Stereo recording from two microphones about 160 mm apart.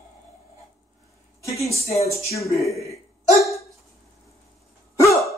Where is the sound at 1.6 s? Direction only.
20° left (ahead or behind).